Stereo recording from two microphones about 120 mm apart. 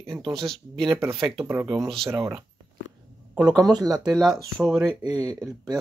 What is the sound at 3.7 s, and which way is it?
Speech, 35° right (ahead or behind).